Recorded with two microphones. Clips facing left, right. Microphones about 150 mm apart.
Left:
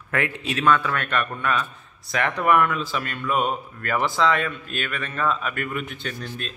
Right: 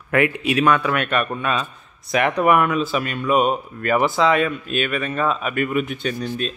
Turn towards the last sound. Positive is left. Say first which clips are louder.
# right 8 dB
turn(degrees=-15)  # may be behind; listen again after turning